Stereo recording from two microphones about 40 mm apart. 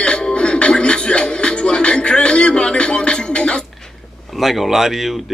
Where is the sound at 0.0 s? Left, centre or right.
Left.